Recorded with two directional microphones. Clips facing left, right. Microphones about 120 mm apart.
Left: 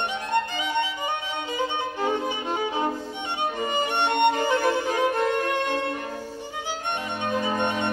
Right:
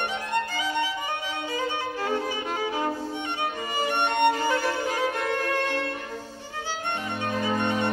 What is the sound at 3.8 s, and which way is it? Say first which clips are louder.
Music: even; 25° left (ahead or behind).